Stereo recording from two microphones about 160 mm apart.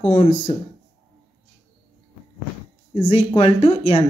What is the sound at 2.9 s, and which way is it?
Speech, 35° left (ahead or behind).